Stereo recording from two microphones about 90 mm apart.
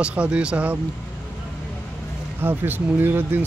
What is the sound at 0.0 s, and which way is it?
Speech, 10° right (ahead or behind).